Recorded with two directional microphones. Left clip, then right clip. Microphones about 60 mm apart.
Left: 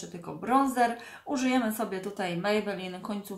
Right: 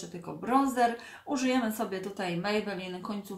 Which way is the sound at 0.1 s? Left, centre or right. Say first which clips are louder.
Left 2 dB; centre.